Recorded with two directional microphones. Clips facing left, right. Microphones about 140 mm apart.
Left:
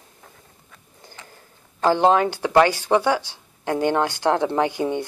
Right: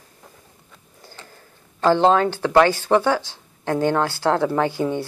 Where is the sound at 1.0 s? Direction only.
15° left (ahead or behind).